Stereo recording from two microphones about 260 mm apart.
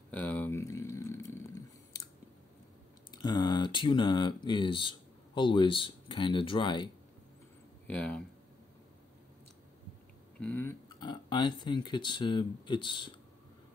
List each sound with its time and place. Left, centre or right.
0.1 s a sound: centre
3.1 s speech: centre
7.8 s speech: centre
10.4 s speech: centre